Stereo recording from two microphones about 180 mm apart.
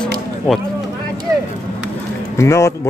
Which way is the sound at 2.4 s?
15° left (ahead or behind).